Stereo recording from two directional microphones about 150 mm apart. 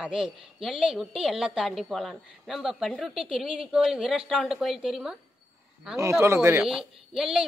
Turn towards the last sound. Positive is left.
turn(degrees=-5)  # may be behind; listen again after turning